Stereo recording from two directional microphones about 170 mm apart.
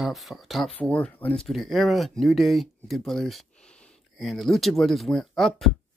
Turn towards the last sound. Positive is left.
turn(degrees=0)  # may be behind; listen again after turning